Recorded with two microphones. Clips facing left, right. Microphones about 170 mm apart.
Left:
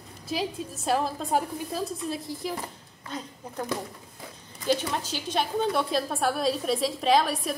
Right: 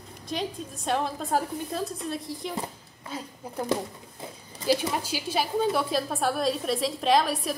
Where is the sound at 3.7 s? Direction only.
25° right (ahead or behind).